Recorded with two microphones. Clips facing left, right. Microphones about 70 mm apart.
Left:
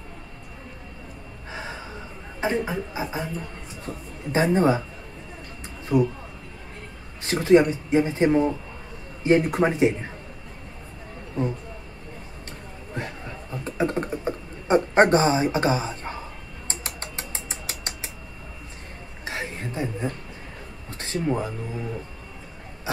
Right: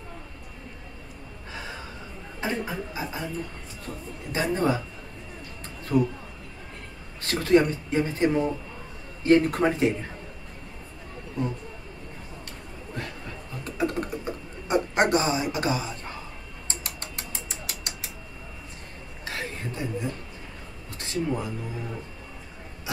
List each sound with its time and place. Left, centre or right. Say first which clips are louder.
1.5 s gasp: left 3 dB; left
2.4 s speech: left 5 dB; left
4.3 s speech: left 5 dB; left
5.9 s speech: left 2 dB; centre
7.2 s speech: left 3 dB; centre
13.7 s computer keyboard: left 3 dB; left
16.6 s a sound: left 3 dB; left
19.2 s a sound: left 2 dB; left
21.0 s speech: left 3 dB; left